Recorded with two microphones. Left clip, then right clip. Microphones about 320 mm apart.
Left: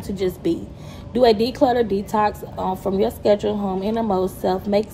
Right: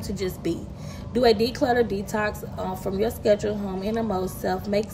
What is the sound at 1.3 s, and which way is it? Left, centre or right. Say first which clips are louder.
Speech: left 4 dB; left.